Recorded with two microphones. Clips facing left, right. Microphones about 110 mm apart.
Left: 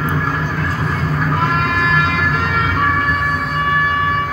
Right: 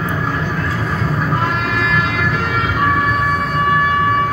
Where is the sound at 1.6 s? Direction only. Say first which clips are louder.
Left 1 dB; centre (ahead or behind).